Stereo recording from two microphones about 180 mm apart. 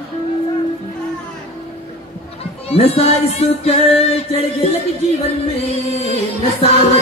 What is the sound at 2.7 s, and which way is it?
Music, 35° left (ahead or behind).